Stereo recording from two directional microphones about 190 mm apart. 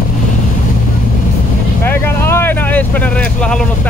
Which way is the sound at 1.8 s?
10° left (ahead or behind).